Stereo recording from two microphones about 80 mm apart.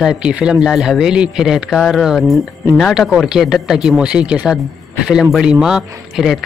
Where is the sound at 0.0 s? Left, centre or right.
Centre.